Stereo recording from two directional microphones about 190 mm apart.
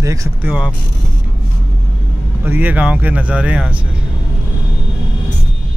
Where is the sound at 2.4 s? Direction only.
10° right (ahead or behind).